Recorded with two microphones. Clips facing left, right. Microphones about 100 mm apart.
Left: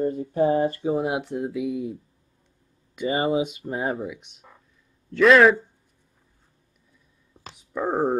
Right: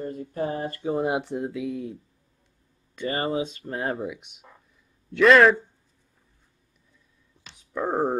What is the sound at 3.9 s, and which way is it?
Speech, 5° right (ahead or behind).